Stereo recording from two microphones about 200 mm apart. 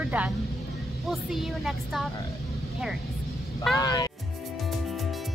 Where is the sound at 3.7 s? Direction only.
20° left (ahead or behind).